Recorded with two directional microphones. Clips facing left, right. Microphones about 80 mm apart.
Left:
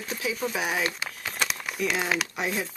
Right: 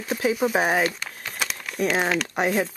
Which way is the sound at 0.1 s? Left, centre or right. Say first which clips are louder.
Right 8 dB; right.